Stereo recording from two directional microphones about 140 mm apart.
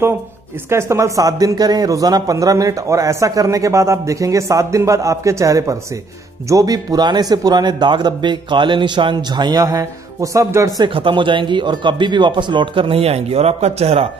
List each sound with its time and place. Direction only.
0.7 s a man's voice: 20° right (ahead or behind)
10.9 s a man's voice: 40° right (ahead or behind)